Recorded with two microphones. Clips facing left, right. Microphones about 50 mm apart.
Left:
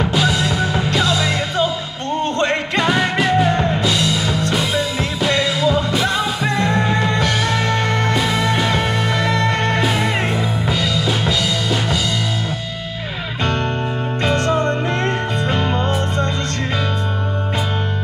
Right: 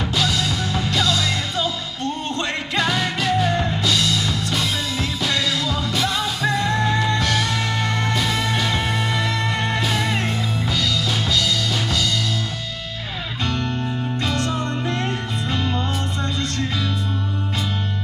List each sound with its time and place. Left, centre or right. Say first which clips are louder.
0.0 s music: left 4 dB; centre
2.2 s music: left 7 dB; left
2.8 s music: left 4 dB; centre
7.2 s music: left 3 dB; centre
7.7 s music: left 4 dB; left
8.2 s music: left 4 dB; centre
9.5 s music: left 5 dB; left
9.8 s music: left 4 dB; centre
10.7 s drum: left 3 dB; centre
14.2 s music: left 8 dB; left